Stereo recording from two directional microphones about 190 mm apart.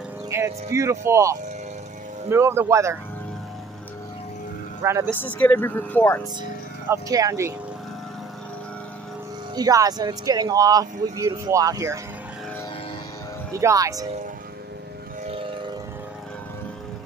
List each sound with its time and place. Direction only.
0.3 s speech: 15° right (ahead or behind)
4.8 s speech: 15° right (ahead or behind)
5.1 s speech: 10° left (ahead or behind)
6.9 s speech: 15° right (ahead or behind)
9.6 s speech: 20° right (ahead or behind)
13.5 s speech: 15° right (ahead or behind)
15.2 s a sound: 30° right (ahead or behind)